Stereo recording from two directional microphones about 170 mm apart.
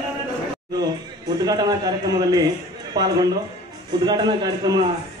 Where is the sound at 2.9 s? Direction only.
25° right (ahead or behind).